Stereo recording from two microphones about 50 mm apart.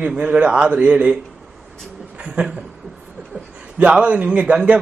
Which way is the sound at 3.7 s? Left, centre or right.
Right.